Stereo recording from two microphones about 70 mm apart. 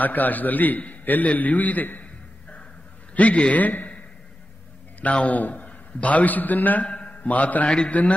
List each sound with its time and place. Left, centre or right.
0.0 s a man's voice: left
3.2 s a man's voice: centre
5.0 s a man's voice: left